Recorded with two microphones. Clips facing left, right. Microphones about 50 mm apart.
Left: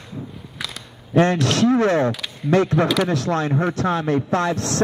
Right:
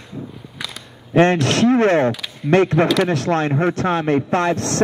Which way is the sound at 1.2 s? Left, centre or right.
Right.